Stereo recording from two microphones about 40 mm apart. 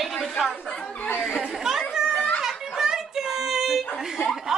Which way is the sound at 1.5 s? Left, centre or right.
Centre.